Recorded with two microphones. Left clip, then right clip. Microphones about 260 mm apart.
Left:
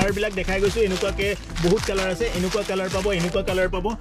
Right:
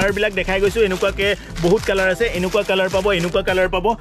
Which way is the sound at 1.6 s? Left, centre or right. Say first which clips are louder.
Right 5 dB; centre.